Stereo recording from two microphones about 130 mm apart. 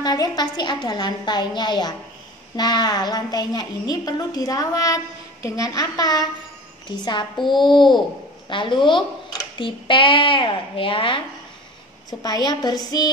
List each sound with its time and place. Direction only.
0.0 s a woman's voice: 30° left (ahead or behind)
7.4 s speech: 40° left (ahead or behind)
12.1 s speech: 30° left (ahead or behind)